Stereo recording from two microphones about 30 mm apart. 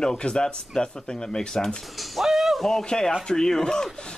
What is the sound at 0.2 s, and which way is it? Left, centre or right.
Speech, left.